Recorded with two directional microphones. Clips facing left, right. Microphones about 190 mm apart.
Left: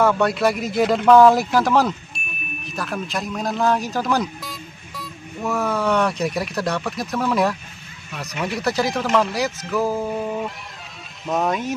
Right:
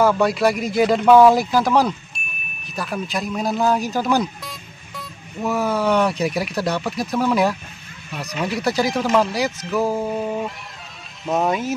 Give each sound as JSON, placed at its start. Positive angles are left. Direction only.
{"t": 0.0, "sound": "a man's voice", "side_deg": -5}